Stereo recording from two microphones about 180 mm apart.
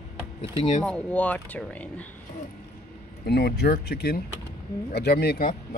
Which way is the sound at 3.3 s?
65° left (ahead or behind).